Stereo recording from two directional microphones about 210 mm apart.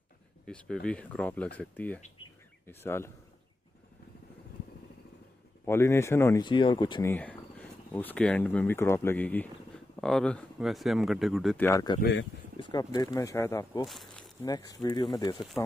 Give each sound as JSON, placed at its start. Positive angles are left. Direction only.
{"t": 0.8, "sound": "speech", "side_deg": 5}
{"t": 5.7, "sound": "speech", "side_deg": 10}
{"t": 11.6, "sound": "speech", "side_deg": 15}
{"t": 12.0, "sound": "speech", "side_deg": 55}
{"t": 12.5, "sound": "speech", "side_deg": 20}
{"t": 13.8, "sound": "speech", "side_deg": 0}
{"t": 14.4, "sound": "speech", "side_deg": 15}